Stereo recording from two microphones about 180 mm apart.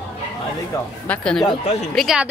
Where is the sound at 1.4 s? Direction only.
35° left (ahead or behind).